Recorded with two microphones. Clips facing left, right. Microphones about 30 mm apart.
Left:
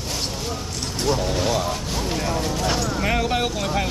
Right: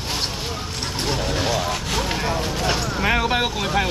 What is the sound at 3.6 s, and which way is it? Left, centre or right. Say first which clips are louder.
Speech: right 2 dB; right.